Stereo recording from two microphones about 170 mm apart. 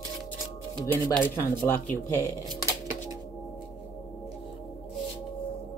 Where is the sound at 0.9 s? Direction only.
10° left (ahead or behind).